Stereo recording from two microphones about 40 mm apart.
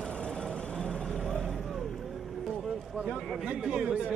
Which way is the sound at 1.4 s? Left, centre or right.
Centre.